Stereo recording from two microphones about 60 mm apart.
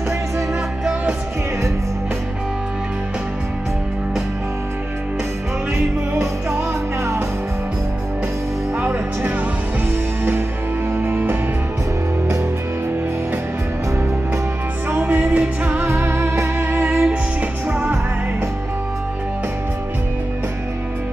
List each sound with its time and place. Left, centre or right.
11.0 s music: right
15.0 s music: right
15.8 s music: right
16.8 s music: centre